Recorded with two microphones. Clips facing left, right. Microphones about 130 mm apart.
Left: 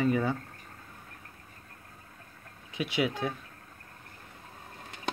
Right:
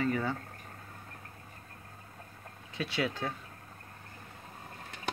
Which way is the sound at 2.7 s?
15° left (ahead or behind).